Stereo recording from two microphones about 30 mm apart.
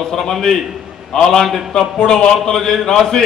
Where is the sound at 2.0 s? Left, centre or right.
Left.